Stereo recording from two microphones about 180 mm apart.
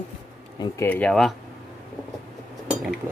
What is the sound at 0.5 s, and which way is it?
Speech, 15° left (ahead or behind).